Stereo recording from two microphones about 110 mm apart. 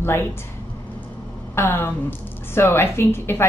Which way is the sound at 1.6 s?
20° left (ahead or behind).